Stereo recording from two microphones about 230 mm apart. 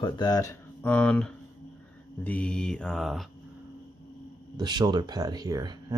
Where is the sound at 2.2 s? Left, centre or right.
Centre.